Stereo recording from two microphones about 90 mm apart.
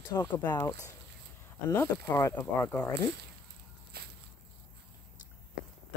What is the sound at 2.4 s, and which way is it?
Speech, 15° left (ahead or behind).